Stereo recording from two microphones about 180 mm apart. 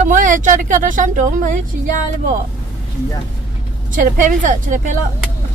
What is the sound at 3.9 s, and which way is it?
A woman's voice, 45° right (ahead or behind).